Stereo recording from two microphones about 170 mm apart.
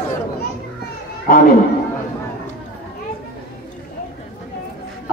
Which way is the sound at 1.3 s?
55° left (ahead or behind).